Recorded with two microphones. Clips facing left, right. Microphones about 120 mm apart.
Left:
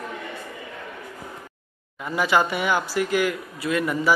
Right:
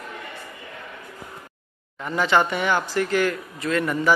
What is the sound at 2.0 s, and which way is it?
Speech, 10° left (ahead or behind).